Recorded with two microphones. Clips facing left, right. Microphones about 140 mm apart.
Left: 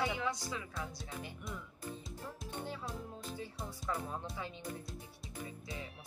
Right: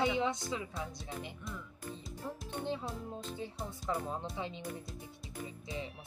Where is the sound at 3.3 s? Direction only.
20° right (ahead or behind).